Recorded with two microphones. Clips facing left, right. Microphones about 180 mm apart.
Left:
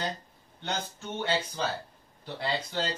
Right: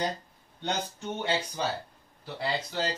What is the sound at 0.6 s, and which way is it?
Speech, 15° right (ahead or behind).